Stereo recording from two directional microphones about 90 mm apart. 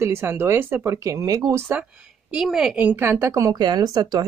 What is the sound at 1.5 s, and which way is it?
Speech, 25° right (ahead or behind).